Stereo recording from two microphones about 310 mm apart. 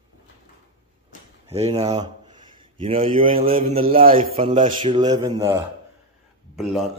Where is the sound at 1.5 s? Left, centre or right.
Centre.